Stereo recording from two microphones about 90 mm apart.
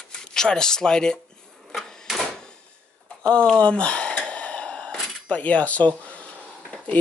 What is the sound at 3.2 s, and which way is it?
Speech, 10° left (ahead or behind).